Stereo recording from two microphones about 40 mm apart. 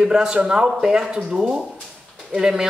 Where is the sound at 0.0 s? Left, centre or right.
Centre.